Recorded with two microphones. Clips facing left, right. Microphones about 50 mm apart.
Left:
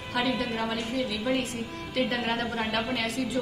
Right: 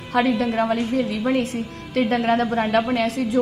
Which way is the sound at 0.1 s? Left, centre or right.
Right.